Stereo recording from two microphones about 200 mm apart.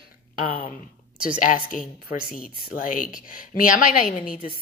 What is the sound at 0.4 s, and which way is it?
A woman's voice, 45° left (ahead or behind).